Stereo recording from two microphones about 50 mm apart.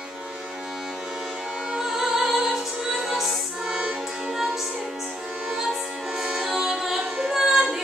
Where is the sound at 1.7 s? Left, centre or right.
Centre.